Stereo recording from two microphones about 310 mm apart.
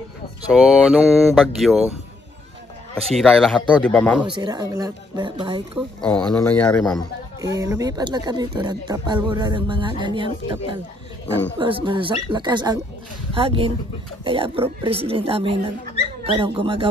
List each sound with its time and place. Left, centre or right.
0.5 s speech: centre
3.0 s speech: centre
4.2 s speech: centre
5.8 s speech: centre
7.4 s speech: centre